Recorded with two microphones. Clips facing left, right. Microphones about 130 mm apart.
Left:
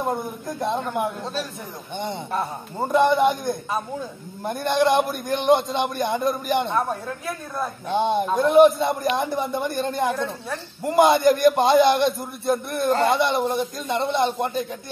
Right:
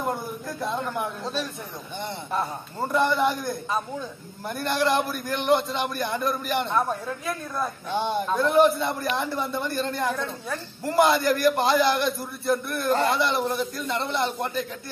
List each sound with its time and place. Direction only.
0.6 s a man's voice: 20° left (ahead or behind)
1.2 s a man's voice: 5° left (ahead or behind)
2.8 s a man's voice: 20° left (ahead or behind)
7.9 s a man's voice: 20° left (ahead or behind)